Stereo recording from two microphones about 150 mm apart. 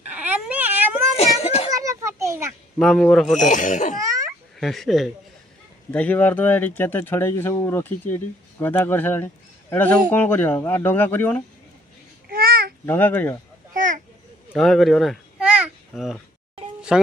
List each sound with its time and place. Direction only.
0.1 s a sound: 10° right (ahead or behind)
1.1 s a sound: 40° left (ahead or behind)
1.7 s children playing: 20° right (ahead or behind)
2.8 s a man's voice: 5° left (ahead or behind)
3.3 s speech: 55° left (ahead or behind)
4.0 s babbling: 25° right (ahead or behind)
4.6 s a man's voice: centre (ahead or behind)
12.3 s babbling: 85° right
12.8 s speech: 15° left (ahead or behind)
13.7 s a sound: 60° right (ahead or behind)
14.5 s babbling: centre (ahead or behind)
15.9 s a man's voice: centre (ahead or behind)